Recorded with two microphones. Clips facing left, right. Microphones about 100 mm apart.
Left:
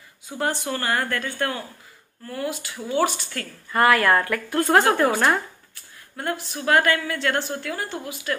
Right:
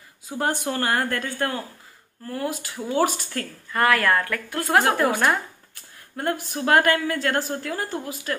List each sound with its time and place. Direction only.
0.4 s a woman's voice: 40° right (ahead or behind)
3.7 s speech: 5° left (ahead or behind)
6.1 s a woman's voice: 45° right (ahead or behind)